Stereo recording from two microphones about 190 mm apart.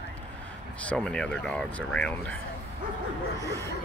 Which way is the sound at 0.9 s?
5° left (ahead or behind).